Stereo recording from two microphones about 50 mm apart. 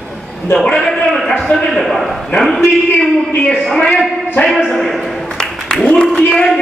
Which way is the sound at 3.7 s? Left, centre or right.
Centre.